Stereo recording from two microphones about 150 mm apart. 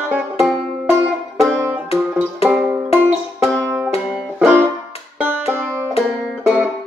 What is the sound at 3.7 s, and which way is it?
Music, 10° right (ahead or behind).